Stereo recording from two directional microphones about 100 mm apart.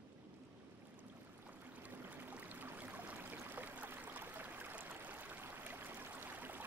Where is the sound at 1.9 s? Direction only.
20° right (ahead or behind).